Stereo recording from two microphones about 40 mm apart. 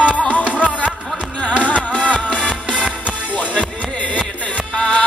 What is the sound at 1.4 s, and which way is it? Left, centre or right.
Music, left.